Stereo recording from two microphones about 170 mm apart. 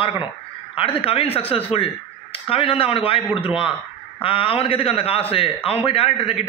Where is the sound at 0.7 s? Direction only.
35° left (ahead or behind).